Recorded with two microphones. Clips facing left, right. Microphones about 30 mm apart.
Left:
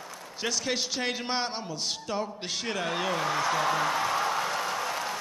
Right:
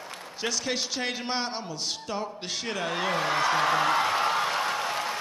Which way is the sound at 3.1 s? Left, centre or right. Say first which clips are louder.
Right 4 dB; right.